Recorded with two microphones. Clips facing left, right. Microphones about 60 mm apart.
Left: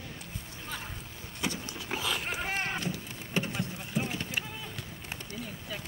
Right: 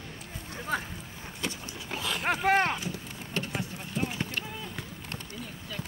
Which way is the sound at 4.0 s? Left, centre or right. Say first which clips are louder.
Right 1 dB; centre.